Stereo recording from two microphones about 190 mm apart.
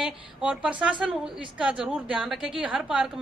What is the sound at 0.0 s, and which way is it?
A woman's voice, 5° right (ahead or behind).